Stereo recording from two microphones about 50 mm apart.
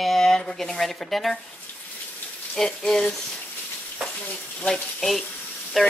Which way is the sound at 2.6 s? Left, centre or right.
Centre.